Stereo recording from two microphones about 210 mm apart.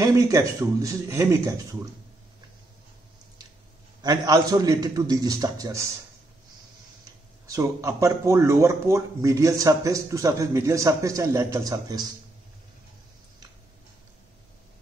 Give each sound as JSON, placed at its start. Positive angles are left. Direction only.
{"t": 0.0, "sound": "speech", "side_deg": -15}
{"t": 4.0, "sound": "speech", "side_deg": -20}
{"t": 7.4, "sound": "speech", "side_deg": -15}